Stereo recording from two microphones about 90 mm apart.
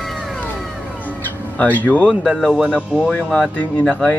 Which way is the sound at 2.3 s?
5° right (ahead or behind).